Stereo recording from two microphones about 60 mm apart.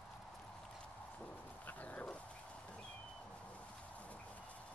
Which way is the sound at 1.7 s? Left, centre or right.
Left.